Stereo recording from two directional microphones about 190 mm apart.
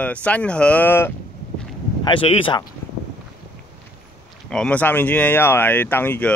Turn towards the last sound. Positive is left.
turn(degrees=10)  # may be behind; listen again after turning